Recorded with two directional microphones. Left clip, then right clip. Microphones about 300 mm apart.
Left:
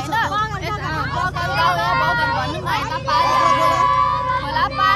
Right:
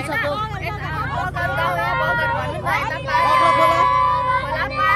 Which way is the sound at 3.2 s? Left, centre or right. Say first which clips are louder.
Right 2 dB; right.